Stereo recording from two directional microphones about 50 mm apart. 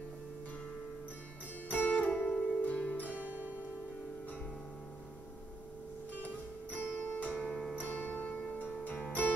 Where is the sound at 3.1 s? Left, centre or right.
Right.